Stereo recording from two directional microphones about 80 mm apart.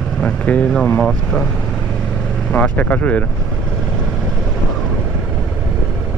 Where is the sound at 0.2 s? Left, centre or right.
Centre.